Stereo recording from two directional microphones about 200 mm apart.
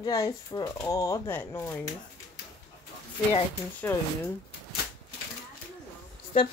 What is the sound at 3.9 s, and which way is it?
Speech, 10° left (ahead or behind).